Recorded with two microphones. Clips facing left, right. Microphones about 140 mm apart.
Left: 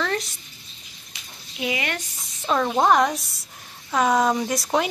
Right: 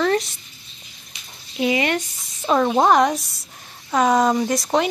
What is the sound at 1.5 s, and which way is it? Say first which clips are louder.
Speech: right 7 dB; 30° right (ahead or behind).